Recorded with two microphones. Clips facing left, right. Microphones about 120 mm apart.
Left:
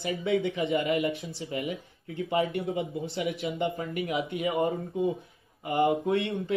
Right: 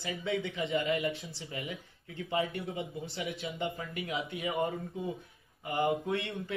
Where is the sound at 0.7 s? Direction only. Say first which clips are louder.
Left 2 dB; 60° left (ahead or behind).